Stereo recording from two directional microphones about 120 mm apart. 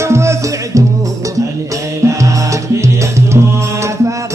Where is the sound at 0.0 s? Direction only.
25° right (ahead or behind).